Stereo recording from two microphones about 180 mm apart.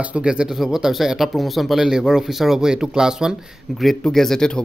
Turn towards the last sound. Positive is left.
turn(degrees=5)  # may be behind; listen again after turning